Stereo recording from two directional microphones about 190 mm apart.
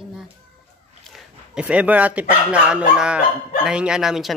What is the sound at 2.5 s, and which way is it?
Speech, 5° right (ahead or behind).